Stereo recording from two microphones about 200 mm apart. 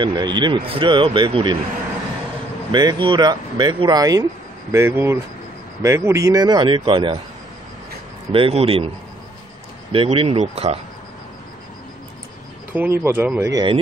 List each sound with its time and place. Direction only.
0.0 s speech: 20° right (ahead or behind)
2.7 s speech: 20° right (ahead or behind)
8.3 s speech: 30° right (ahead or behind)
9.9 s speech: 30° right (ahead or behind)
12.7 s speech: 10° right (ahead or behind)